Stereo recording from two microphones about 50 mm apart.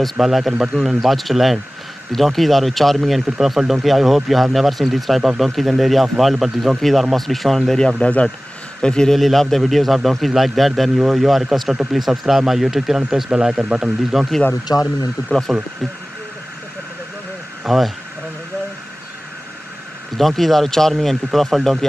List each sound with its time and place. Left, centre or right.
0.0 s speech: centre
8.0 s speech: left; by 13.9 s centre
14.1 s speech: centre
17.6 s speech: centre
20.2 s speech: centre